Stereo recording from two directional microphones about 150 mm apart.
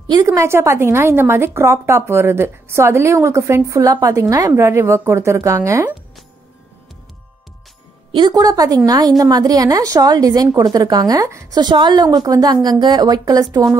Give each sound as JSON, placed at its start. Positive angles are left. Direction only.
{"t": 0.1, "sound": "a woman's voice", "side_deg": -25}
{"t": 8.1, "sound": "a woman's voice", "side_deg": -30}